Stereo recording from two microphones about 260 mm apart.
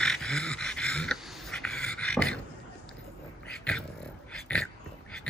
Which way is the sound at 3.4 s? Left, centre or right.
Centre.